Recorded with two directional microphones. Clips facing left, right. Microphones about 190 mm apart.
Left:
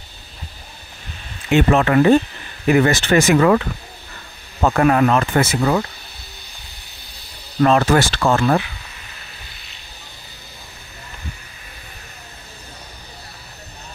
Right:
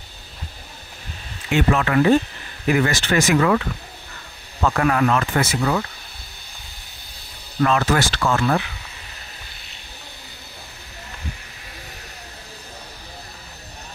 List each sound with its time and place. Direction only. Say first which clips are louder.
1.5 s speech: left 4 dB; 30° left (ahead or behind)
7.6 s speech: left 4 dB; 35° left (ahead or behind)